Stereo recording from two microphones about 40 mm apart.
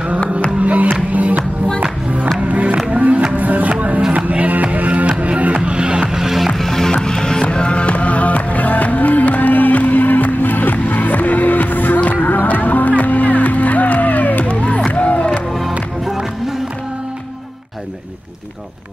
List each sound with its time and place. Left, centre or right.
0.6 s music: right
2.4 s music: right
5.6 s music: right; by 6.5 s centre
6.6 s music: centre
7.5 s music: left
14.5 s music: left